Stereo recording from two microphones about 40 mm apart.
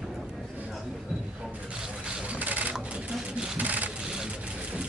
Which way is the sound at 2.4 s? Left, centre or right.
Right.